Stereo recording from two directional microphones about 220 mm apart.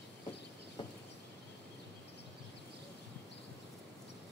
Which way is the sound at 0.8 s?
25° left (ahead or behind).